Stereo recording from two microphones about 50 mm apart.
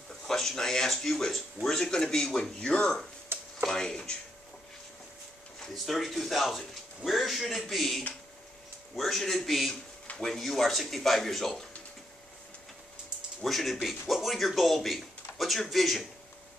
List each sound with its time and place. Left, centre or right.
0.3 s speech: centre
5.6 s a man's voice: centre
13.4 s a man's voice: centre